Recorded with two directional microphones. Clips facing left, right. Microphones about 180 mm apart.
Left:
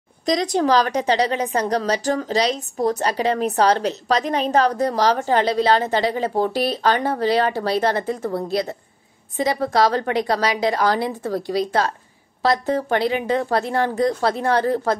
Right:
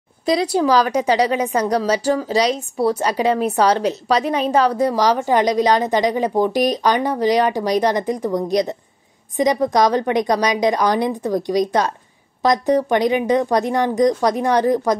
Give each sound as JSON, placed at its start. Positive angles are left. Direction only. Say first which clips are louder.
{"t": 0.2, "sound": "a woman's voice", "louder": "right 2 dB", "side_deg": -10}